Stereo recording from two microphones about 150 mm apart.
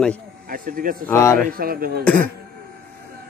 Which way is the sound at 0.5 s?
70° right (ahead or behind).